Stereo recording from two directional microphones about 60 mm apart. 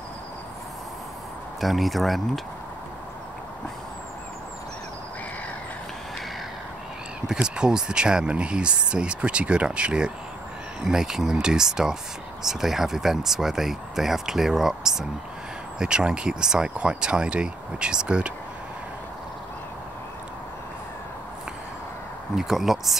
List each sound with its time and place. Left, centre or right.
1.6 s speech: centre
7.3 s speech: centre
22.3 s speech: centre